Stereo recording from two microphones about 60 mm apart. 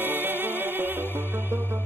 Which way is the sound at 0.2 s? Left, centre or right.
Right.